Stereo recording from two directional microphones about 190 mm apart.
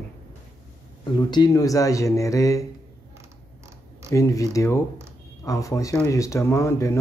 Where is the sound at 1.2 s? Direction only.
20° left (ahead or behind).